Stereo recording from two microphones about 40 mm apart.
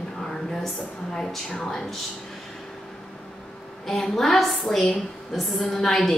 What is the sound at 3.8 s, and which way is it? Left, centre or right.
A woman's voice, centre.